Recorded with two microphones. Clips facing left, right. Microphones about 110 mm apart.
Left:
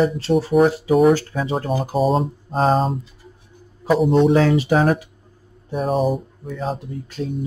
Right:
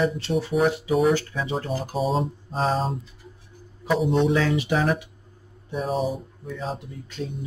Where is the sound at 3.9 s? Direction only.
Centre (ahead or behind).